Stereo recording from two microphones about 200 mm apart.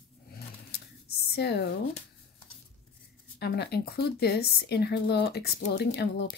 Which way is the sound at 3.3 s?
55° left (ahead or behind).